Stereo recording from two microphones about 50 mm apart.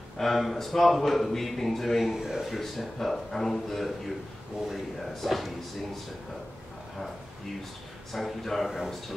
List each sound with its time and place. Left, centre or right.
0.2 s a man's voice: centre
5.0 s a man's voice: centre
8.1 s a man's voice: centre